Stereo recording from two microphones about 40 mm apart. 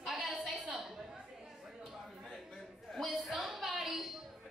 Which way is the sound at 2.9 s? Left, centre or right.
Centre.